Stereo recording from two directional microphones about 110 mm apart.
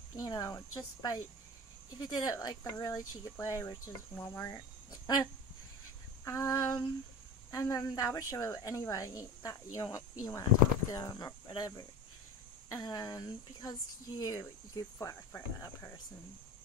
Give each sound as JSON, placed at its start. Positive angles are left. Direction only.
{"t": 0.1, "sound": "speech", "side_deg": 35}
{"t": 4.5, "sound": "speech", "side_deg": 35}
{"t": 6.2, "sound": "speech", "side_deg": 30}